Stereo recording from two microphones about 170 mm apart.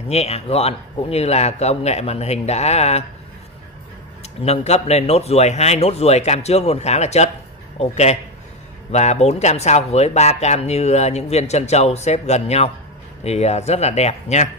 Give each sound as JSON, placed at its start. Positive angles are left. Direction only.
{"t": 0.1, "sound": "speech", "side_deg": 40}
{"t": 4.2, "sound": "speech", "side_deg": 40}